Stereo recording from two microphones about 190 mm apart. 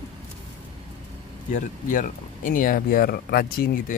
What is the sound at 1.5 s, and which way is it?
Speech, 45° left (ahead or behind).